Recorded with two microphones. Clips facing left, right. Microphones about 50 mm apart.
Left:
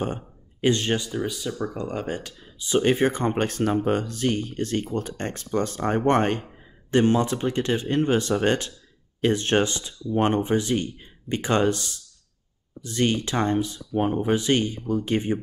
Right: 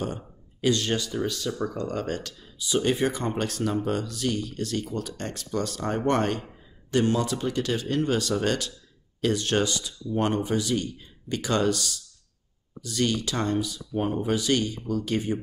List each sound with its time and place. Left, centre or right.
0.0 s speech: left
2.6 s speech: left